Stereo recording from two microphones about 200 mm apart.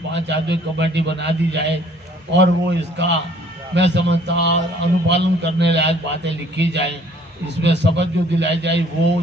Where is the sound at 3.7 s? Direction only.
60° right (ahead or behind).